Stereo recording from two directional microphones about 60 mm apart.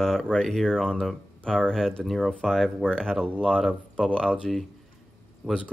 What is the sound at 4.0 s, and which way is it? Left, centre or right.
Speech, centre.